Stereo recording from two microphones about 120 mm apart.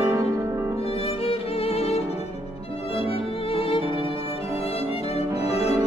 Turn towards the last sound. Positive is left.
turn(degrees=60)  # may be behind; listen again after turning